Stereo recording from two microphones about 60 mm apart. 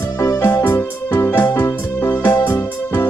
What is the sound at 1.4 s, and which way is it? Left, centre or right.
Music, left.